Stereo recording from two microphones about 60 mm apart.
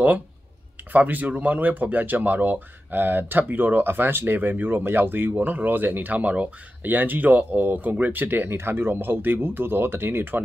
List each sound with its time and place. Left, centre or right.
0.9 s speech: right